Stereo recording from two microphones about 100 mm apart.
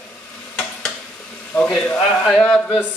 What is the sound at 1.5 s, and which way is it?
Speech, 10° left (ahead or behind).